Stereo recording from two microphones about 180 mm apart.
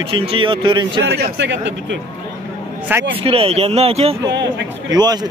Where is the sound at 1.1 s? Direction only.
70° right (ahead or behind); by 2.0 s 85° right.